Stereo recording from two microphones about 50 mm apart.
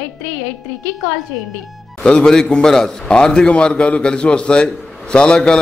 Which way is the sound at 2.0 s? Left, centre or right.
Left.